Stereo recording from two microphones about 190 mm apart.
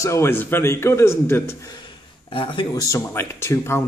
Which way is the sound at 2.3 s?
25° left (ahead or behind).